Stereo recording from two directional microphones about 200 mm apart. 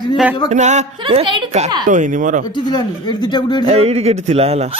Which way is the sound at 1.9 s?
40° right (ahead or behind).